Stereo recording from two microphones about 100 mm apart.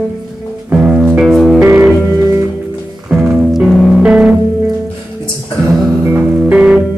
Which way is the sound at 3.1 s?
5° right (ahead or behind).